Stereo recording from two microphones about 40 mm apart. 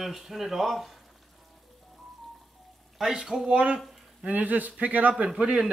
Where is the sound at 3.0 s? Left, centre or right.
Centre.